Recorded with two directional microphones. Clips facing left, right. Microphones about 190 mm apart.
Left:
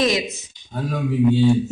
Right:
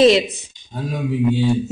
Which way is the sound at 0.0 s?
30° right (ahead or behind).